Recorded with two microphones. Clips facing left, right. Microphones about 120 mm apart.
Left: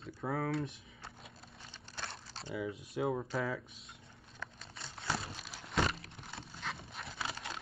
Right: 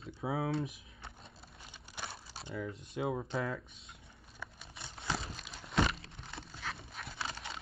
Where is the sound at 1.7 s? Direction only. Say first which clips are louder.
Right 1 dB; 10° right (ahead or behind).